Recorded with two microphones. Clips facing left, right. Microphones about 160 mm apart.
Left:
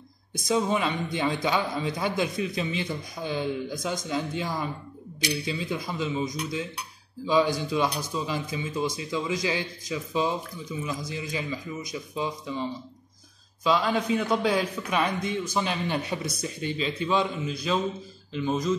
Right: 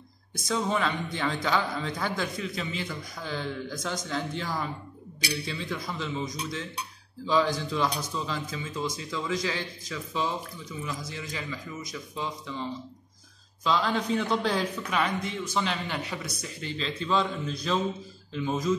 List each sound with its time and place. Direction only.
0.5 s a man's voice: 15° left (ahead or behind)
5.7 s a man's voice: 20° left (ahead or behind)
7.2 s a man's voice: 15° left (ahead or behind)
13.7 s a man's voice: 10° left (ahead or behind); by 16.7 s 25° left (ahead or behind)
16.7 s a man's voice: 10° left (ahead or behind)